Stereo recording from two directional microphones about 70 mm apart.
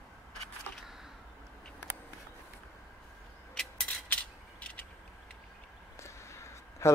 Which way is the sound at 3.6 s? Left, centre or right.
Centre.